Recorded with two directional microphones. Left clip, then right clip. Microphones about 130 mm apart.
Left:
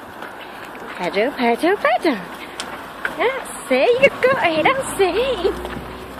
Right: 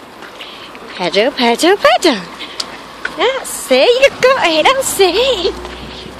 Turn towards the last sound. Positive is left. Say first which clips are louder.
# right 2 dB
turn(degrees=-70)  # may be behind; listen again after turning